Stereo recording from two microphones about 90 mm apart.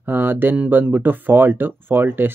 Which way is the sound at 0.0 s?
25° right (ahead or behind).